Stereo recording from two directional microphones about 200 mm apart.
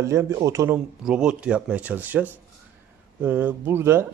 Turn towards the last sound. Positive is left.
turn(degrees=-10)  # may be behind; listen again after turning